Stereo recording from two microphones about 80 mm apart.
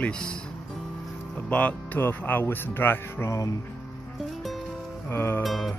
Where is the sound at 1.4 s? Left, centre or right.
Centre.